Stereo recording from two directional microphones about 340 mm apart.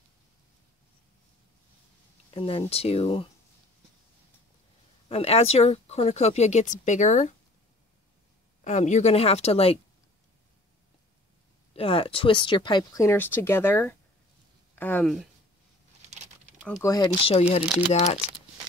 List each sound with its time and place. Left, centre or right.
2.3 s speech: centre
5.0 s speech: centre
8.6 s speech: left
11.7 s speech: centre
16.0 s a sound: centre
16.6 s speech: centre